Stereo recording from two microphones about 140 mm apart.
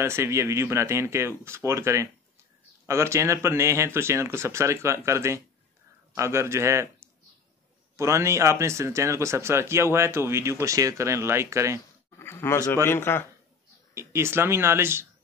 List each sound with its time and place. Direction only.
0.0 s speech: 20° right (ahead or behind)
7.9 s speech: 20° right (ahead or behind)
12.2 s speech: 15° left (ahead or behind)
13.9 s speech: 20° right (ahead or behind)